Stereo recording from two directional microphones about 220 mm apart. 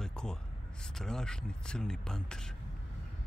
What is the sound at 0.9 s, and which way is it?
Speech, 5° left (ahead or behind).